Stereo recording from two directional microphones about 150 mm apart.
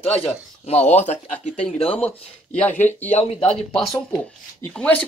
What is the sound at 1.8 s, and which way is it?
Speech, 40° left (ahead or behind).